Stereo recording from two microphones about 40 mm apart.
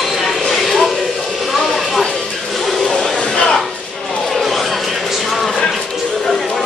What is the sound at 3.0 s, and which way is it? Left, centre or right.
Music, left.